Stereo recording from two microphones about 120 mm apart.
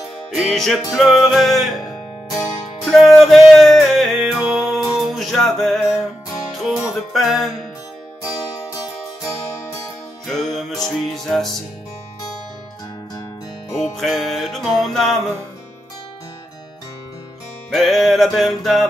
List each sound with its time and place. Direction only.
0.3 s music: centre (ahead or behind)
10.2 s music: centre (ahead or behind)
13.9 s music: centre (ahead or behind)
17.7 s music: centre (ahead or behind)